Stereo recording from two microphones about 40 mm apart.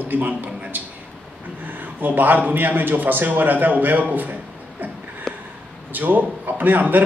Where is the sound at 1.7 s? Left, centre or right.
Right.